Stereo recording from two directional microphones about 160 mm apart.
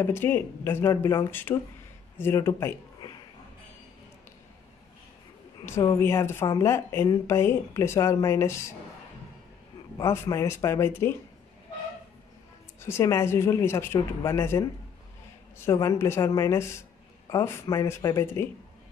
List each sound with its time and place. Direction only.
0.0 s speech: 15° left (ahead or behind)
3.0 s shuffle: 25° left (ahead or behind)
5.9 s speech: 15° left (ahead or behind)
9.9 s speech: 15° left (ahead or behind)
12.8 s speech: 15° left (ahead or behind)
15.8 s speech: 20° left (ahead or behind)